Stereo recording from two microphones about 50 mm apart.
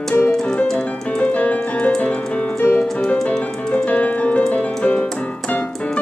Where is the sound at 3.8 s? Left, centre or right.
Left.